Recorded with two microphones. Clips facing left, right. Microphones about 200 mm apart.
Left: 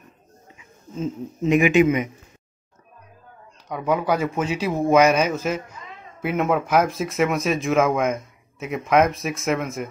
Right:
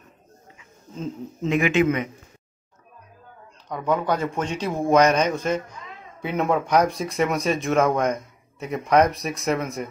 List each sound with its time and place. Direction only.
0.9 s speech: 5° left (ahead or behind)
3.6 s speech: 10° left (ahead or behind)